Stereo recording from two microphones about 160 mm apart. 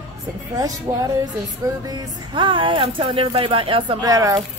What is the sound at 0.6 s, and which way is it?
Music, 20° right (ahead or behind).